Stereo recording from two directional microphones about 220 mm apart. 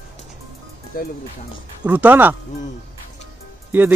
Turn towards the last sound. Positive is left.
turn(degrees=-10)  # may be behind; listen again after turning